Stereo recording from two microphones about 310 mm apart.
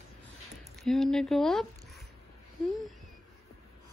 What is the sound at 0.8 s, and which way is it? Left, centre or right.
Speech, centre.